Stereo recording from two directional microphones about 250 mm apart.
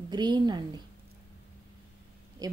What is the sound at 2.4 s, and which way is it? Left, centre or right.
Speech, centre.